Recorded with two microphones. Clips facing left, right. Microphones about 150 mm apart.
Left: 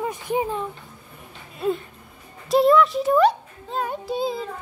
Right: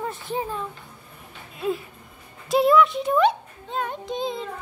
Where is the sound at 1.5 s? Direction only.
Centre (ahead or behind).